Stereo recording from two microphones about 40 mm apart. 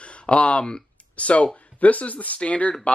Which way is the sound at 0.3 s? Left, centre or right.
Left.